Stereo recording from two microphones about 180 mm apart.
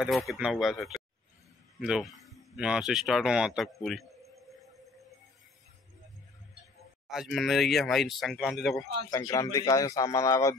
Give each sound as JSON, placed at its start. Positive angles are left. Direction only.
{"t": 0.0, "sound": "speech", "side_deg": 0}
{"t": 7.1, "sound": "speech", "side_deg": 0}
{"t": 9.1, "sound": "speech", "side_deg": 20}